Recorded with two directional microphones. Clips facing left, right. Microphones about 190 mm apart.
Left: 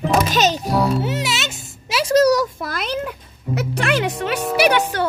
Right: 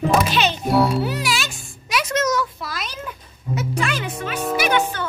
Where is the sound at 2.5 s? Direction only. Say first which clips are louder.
Left 7 dB; 55° left (ahead or behind).